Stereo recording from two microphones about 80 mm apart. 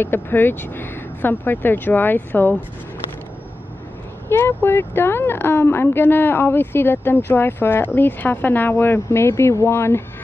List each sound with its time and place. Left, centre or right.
0.0 s speech: left
4.3 s speech: left